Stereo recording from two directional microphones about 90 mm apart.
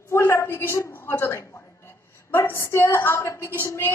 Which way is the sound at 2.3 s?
30° left (ahead or behind).